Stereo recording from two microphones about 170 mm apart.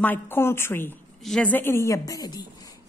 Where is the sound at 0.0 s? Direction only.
10° left (ahead or behind).